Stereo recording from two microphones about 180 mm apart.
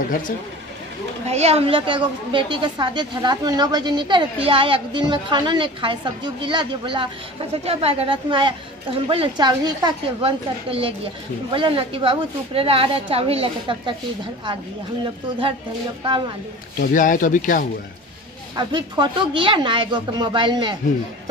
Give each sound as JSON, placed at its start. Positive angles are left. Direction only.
{"t": 1.2, "sound": "a woman's voice", "side_deg": -35}
{"t": 16.8, "sound": "speech", "side_deg": 50}
{"t": 18.6, "sound": "a woman's voice", "side_deg": -25}